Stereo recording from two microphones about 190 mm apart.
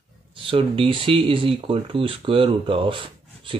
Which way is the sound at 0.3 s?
30° right (ahead or behind).